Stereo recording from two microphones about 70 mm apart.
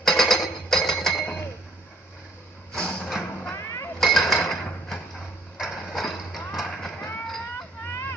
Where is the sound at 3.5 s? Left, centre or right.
Left.